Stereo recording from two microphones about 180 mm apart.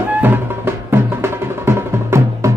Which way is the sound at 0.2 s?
15° right (ahead or behind).